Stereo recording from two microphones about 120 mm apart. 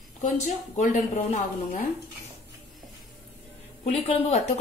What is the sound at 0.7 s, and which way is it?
Speech, 75° left (ahead or behind).